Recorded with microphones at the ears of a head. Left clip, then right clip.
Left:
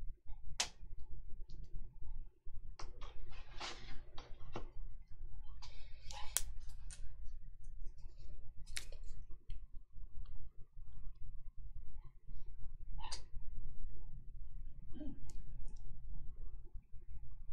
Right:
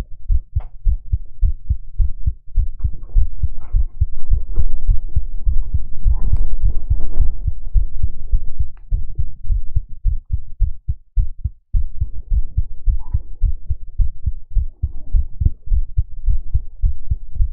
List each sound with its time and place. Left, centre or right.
0.3 s heart sounds: right